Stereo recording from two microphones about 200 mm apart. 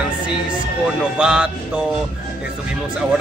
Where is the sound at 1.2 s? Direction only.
5° right (ahead or behind).